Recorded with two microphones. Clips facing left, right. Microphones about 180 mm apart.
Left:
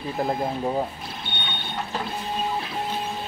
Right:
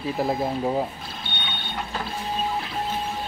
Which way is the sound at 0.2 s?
5° right (ahead or behind).